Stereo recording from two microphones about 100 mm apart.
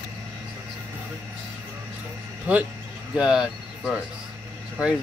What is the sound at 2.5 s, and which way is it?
Speech, 15° right (ahead or behind).